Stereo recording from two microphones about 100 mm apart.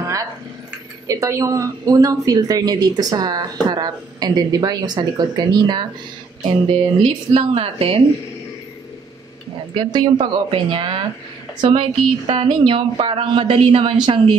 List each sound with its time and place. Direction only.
0.0 s a sound: 35° right (ahead or behind)
1.0 s a woman's voice: 35° right (ahead or behind)
6.4 s speech: 80° right
9.8 s a woman's voice: 50° right (ahead or behind)
12.3 s a woman's voice: 65° right (ahead or behind)